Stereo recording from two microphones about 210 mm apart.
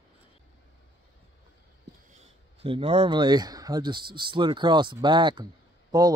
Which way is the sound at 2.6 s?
25° right (ahead or behind).